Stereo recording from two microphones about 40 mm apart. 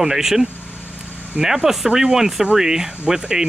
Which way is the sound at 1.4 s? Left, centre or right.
Centre.